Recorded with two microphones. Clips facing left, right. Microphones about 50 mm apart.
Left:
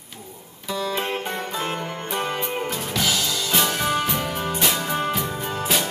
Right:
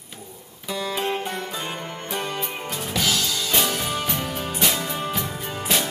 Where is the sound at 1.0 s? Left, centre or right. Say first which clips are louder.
Even; centre.